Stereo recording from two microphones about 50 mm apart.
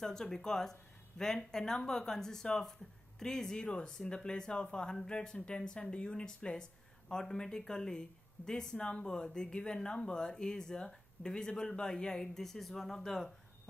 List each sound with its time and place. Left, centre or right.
0.0 s speech: centre